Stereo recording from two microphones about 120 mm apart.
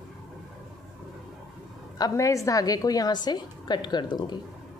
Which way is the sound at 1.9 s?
30° left (ahead or behind).